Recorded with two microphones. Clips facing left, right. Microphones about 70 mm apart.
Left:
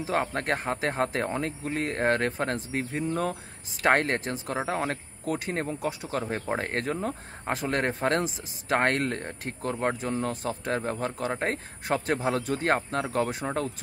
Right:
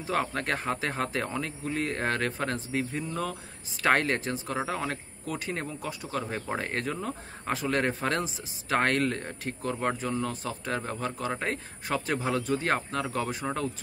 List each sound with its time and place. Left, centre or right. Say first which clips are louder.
0.0 s speech: left 2 dB; left
3.8 s speech: left 1 dB; left
13.3 s speech: left 1 dB; left